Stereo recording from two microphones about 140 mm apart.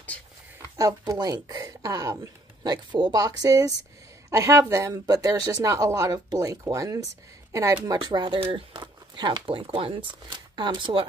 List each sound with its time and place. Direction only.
0.7 s a woman's voice: 25° right (ahead or behind)